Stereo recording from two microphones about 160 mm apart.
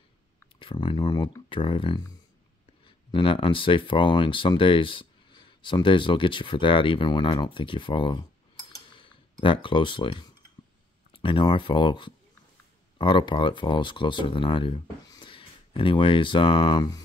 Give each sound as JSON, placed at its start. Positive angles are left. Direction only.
{"t": 0.6, "sound": "speech", "side_deg": 30}
{"t": 8.8, "sound": "clicking", "side_deg": 30}
{"t": 9.4, "sound": "speech", "side_deg": 30}